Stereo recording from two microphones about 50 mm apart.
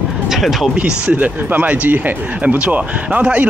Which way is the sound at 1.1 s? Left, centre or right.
Right.